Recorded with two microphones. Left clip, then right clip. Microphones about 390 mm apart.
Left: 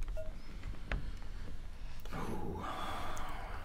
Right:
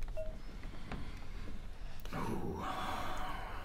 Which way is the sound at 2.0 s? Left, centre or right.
Right.